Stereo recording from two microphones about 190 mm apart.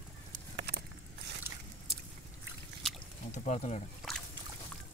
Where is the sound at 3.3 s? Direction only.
40° left (ahead or behind).